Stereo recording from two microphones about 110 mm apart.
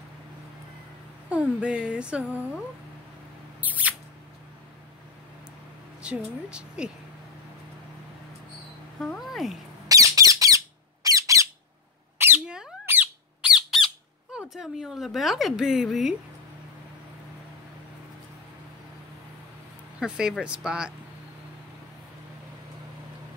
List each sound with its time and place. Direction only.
1.3 s speech: 10° right (ahead or behind)
3.6 s mouse: 15° right (ahead or behind)
6.0 s speech: 10° right (ahead or behind)
9.0 s speech: centre (ahead or behind)
9.8 s squawk: 30° right (ahead or behind)
12.4 s a sound: 5° right (ahead or behind)
12.8 s squeak: 15° right (ahead or behind)
14.3 s a woman's voice: 5° right (ahead or behind)
20.0 s speech: 5° right (ahead or behind)